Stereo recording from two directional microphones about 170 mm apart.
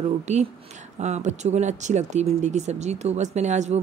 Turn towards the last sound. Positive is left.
turn(degrees=-45)  # may be behind; listen again after turning